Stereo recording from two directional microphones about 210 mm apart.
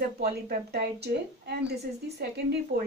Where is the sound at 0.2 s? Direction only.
50° right (ahead or behind).